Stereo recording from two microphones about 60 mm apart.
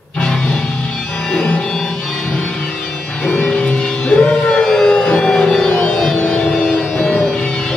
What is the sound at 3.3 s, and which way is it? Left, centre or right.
Music, centre.